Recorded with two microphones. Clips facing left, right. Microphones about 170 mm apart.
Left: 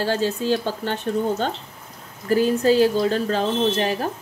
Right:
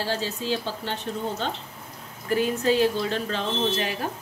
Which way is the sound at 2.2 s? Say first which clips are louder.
Left 5 dB; 35° left (ahead or behind).